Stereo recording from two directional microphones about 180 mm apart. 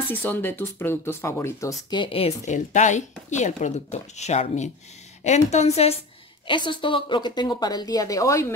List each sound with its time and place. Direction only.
0.1 s speech: 10° left (ahead or behind); by 5.9 s 35° left (ahead or behind)
6.4 s a woman's voice: 25° left (ahead or behind)